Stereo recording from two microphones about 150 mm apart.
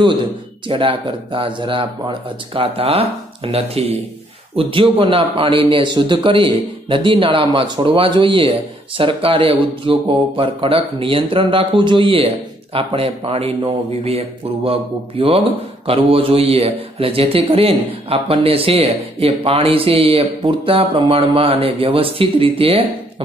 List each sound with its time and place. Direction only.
0.7 s a man's voice: 35° right (ahead or behind)